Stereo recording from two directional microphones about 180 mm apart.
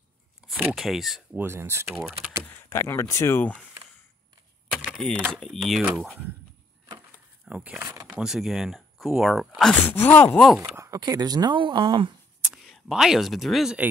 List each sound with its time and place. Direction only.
0.5 s speech: centre (ahead or behind)
1.4 s speech: 15° right (ahead or behind)
1.9 s speech: centre (ahead or behind)
2.7 s speech: 15° left (ahead or behind)
4.7 s typewriter: centre (ahead or behind)
5.3 s speech: centre (ahead or behind)
7.4 s speech: 5° right (ahead or behind)
8.2 s speech: centre (ahead or behind)
10.6 s speech: 15° right (ahead or behind)
12.6 s speech: centre (ahead or behind)